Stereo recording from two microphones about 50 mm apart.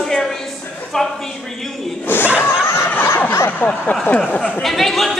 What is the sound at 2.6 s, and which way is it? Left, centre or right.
Snicker, left.